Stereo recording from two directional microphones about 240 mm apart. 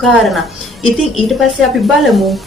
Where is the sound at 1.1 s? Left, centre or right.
Centre.